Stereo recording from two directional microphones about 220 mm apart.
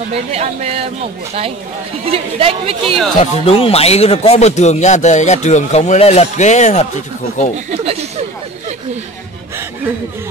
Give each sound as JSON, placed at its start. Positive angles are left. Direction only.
{"t": 0.1, "sound": "speech", "side_deg": -30}
{"t": 2.0, "sound": "speech", "side_deg": -25}
{"t": 3.2, "sound": "speech", "side_deg": 25}
{"t": 7.7, "sound": "a sound", "side_deg": -25}